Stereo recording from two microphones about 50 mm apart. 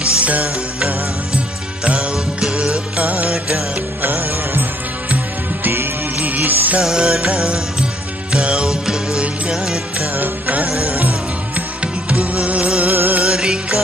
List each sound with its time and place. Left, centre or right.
0.0 s music: right
2.5 s music: centre
3.0 s music: right
4.0 s music: right
6.1 s music: right
6.8 s music: centre
10.1 s music: right
11.8 s music: right
12.9 s music: right
13.2 s music: centre